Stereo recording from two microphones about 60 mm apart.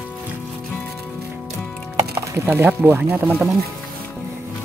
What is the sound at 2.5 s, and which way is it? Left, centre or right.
Speech, right.